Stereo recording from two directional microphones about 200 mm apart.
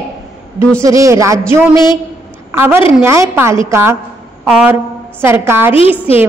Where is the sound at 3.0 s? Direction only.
10° right (ahead or behind).